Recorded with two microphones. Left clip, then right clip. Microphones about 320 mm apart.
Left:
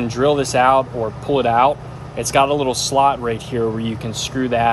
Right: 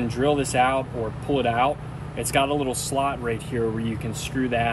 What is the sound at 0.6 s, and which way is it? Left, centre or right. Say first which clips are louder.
Speech: left 7 dB; centre.